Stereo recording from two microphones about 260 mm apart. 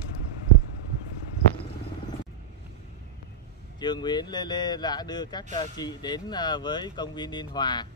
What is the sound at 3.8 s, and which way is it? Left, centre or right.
Speech, centre.